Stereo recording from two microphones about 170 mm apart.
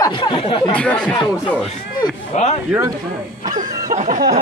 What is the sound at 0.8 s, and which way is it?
Speech, 10° left (ahead or behind).